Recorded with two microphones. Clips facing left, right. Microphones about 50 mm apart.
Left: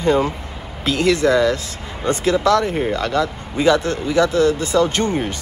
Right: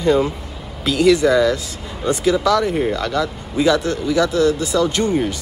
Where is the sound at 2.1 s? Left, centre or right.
Left.